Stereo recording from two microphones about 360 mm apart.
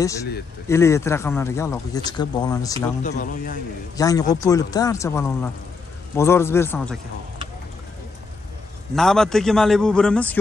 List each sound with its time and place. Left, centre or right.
0.7 s speech: centre
3.0 s a man's voice: left
3.9 s speech: centre
8.9 s a man's voice: centre